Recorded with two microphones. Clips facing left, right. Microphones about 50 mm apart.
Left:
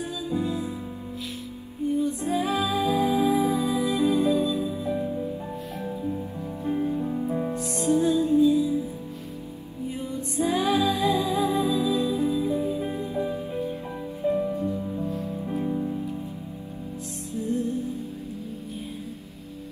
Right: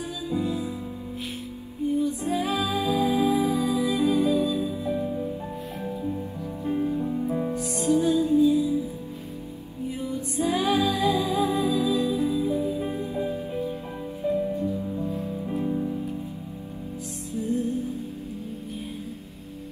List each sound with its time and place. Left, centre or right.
0.3 s music: left
1.9 s music: left
5.8 s music: centre
6.6 s music: left
7.0 s music: centre
7.5 s music: left
10.0 s music: left
15.0 s music: centre
15.7 s music: centre
17.4 s music: left